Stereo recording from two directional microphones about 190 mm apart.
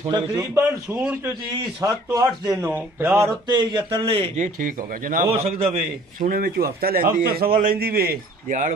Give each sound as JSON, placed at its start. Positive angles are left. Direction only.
{"t": 0.3, "sound": "a man's voice", "side_deg": -15}
{"t": 3.4, "sound": "a man's voice", "side_deg": -25}